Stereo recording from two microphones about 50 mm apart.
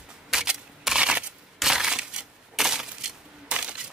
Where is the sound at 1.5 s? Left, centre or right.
Centre.